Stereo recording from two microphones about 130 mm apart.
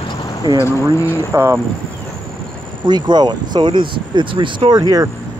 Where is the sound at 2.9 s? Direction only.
35° right (ahead or behind).